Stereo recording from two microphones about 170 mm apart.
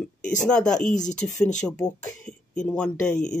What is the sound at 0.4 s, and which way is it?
Speech, 5° left (ahead or behind).